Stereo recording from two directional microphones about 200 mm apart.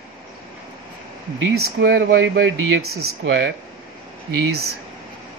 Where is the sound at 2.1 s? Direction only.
70° right (ahead or behind).